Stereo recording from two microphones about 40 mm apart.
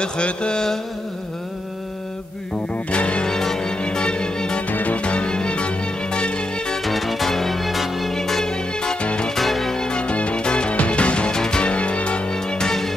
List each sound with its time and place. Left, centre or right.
0.0 s a sound: left
2.9 s a sound: left
3.3 s music: centre
4.6 s music: left
5.0 s music: left
6.8 s music: centre
8.1 s music: centre
9.0 s music: left
9.3 s music: centre
9.8 s music: left
11.3 s music: centre
11.6 s music: left; by 12.9 s centre